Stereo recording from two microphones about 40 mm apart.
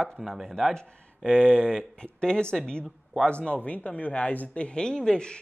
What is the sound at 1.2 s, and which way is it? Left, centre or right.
Speech, left.